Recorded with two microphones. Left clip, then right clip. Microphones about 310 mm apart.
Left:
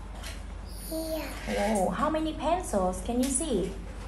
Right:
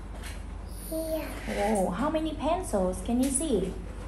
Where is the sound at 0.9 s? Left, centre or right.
Centre.